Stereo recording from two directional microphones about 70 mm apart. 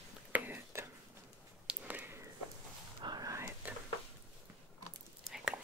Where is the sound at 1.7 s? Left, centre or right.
Right.